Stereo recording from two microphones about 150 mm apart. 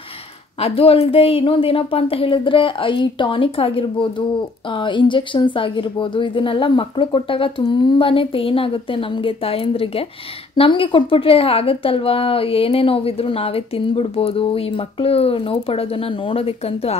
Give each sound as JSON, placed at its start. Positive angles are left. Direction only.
{"t": 0.6, "sound": "a woman's voice", "side_deg": 40}